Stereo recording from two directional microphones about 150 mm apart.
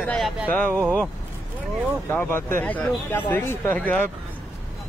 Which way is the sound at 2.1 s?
15° left (ahead or behind).